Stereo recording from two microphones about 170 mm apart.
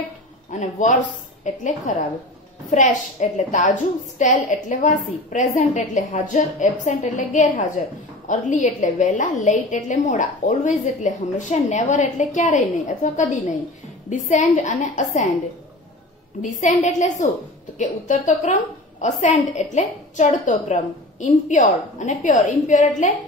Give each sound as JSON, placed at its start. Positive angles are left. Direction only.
{"t": 0.5, "sound": "a man's voice", "side_deg": 45}
{"t": 16.3, "sound": "a woman's voice", "side_deg": 45}